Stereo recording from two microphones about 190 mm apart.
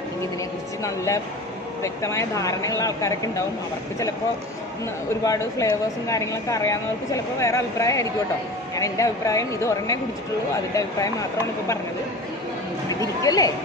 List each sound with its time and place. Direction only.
0.8 s speech: 15° left (ahead or behind)
5.2 s speech: 15° left (ahead or behind)
13.0 s speech: 20° left (ahead or behind)